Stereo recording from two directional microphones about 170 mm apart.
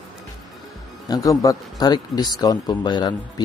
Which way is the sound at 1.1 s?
20° left (ahead or behind).